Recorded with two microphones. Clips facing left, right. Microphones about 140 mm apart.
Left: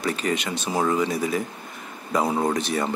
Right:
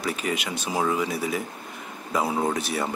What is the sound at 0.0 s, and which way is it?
Speech, 5° right (ahead or behind).